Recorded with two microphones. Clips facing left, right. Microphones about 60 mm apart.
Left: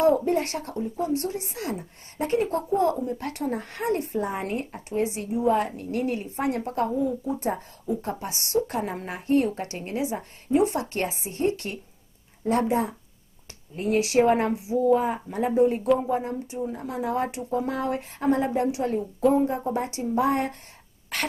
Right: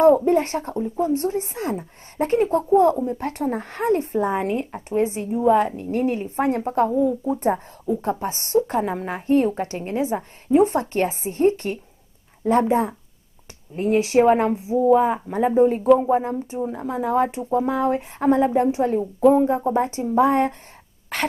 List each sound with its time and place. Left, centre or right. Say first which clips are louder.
0.0 s a woman's voice: right 6 dB; right
7.3 s a woman's voice: right 6 dB; right